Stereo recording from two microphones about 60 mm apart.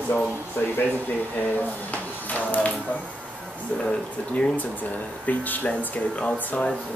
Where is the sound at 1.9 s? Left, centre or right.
Left.